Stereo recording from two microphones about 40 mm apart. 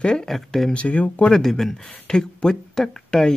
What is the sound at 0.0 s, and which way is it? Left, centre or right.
Speech, centre.